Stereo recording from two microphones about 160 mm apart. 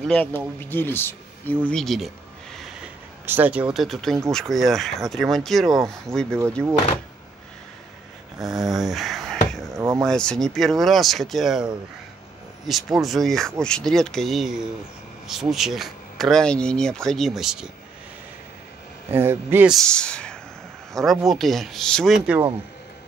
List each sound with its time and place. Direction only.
0.1 s speech: 10° left (ahead or behind)
3.3 s speech: 10° right (ahead or behind); by 6.4 s 5° left (ahead or behind)
8.4 s a sound: centre (ahead or behind)
9.8 s a sound: 20° right (ahead or behind)
10.0 s speech: 5° left (ahead or behind)
19.0 s speech: 15° right (ahead or behind)
19.7 s speech: 5° left (ahead or behind)